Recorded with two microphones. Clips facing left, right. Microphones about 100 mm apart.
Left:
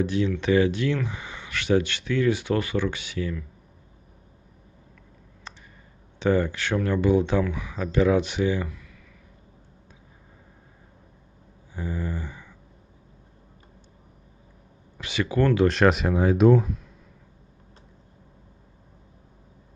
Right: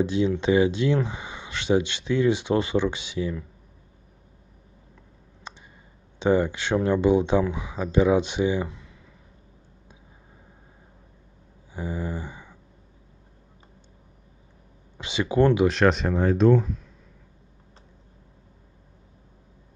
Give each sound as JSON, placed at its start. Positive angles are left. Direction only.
{"t": 0.0, "sound": "speech", "side_deg": -20}
{"t": 5.5, "sound": "clicking", "side_deg": -15}
{"t": 6.1, "sound": "speech", "side_deg": -20}
{"t": 11.7, "sound": "a sound", "side_deg": -15}
{"t": 15.0, "sound": "speech", "side_deg": -20}
{"t": 15.6, "sound": "speech", "side_deg": 0}